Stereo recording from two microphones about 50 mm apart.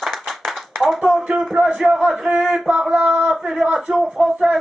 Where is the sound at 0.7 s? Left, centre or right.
Centre.